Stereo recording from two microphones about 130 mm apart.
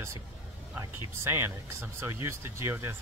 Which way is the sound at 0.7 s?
20° right (ahead or behind).